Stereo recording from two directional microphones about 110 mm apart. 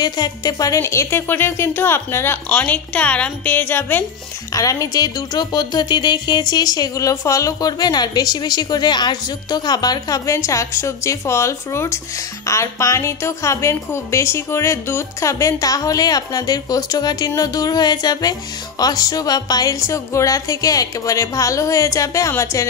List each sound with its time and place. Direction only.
0.0 s speech: 40° left (ahead or behind)
0.7 s speech: 25° left (ahead or behind)
4.6 s speech: 30° left (ahead or behind)